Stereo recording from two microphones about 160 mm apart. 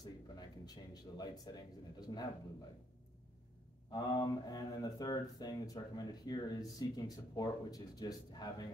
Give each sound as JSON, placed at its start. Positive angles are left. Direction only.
{"t": 0.0, "sound": "a man's voice", "side_deg": 25}
{"t": 3.9, "sound": "speech", "side_deg": 25}